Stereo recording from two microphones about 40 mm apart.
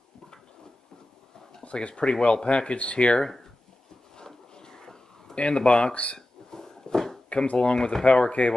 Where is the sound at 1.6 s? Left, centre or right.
Left.